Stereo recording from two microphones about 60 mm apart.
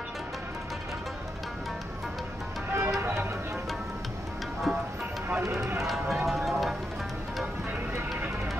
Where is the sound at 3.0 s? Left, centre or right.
Right.